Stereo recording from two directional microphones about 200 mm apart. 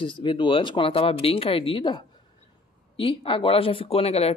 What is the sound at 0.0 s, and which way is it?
Speech, 25° left (ahead or behind).